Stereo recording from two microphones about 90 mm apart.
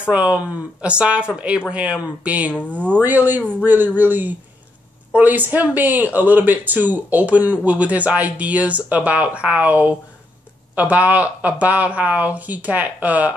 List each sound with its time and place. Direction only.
0.1 s speech: 15° right (ahead or behind)
2.5 s speech: 15° left (ahead or behind)
2.8 s speech: 20° right (ahead or behind)